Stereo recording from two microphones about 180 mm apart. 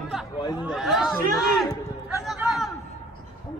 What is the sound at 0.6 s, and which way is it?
A man's voice, centre (ahead or behind).